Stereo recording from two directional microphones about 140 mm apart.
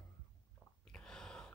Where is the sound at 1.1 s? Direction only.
5° left (ahead or behind).